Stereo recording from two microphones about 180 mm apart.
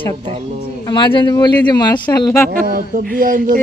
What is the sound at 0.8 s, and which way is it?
A man's voice, 25° left (ahead or behind).